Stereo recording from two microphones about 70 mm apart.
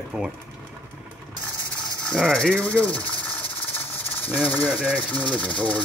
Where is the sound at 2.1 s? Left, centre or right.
Centre.